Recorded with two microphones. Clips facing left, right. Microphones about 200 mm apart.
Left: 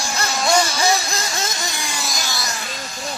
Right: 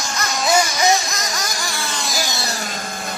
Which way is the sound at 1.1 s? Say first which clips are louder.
Left 1 dB; 30° left (ahead or behind).